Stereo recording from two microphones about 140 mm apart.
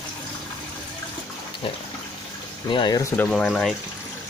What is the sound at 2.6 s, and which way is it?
Speech, 35° left (ahead or behind).